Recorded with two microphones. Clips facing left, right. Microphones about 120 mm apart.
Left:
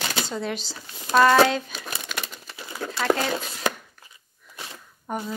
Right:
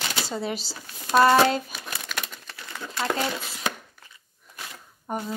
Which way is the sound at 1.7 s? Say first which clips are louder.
Left 1 dB; centre (ahead or behind).